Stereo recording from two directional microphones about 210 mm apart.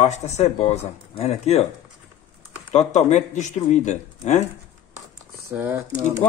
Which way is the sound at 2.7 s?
35° left (ahead or behind).